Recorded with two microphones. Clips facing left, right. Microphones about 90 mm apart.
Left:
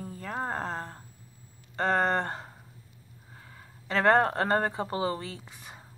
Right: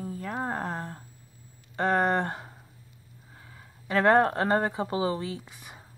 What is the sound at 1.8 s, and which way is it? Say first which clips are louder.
Speech: right 1 dB; 15° right (ahead or behind).